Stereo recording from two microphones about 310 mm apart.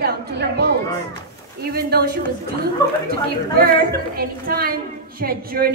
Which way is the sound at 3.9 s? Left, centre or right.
Right.